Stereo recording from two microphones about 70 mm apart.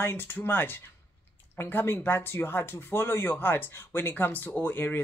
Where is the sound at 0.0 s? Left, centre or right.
Left.